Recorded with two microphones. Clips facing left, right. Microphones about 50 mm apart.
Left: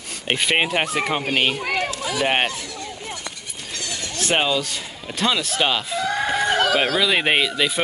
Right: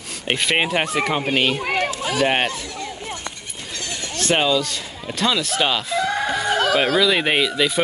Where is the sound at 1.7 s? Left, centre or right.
Right.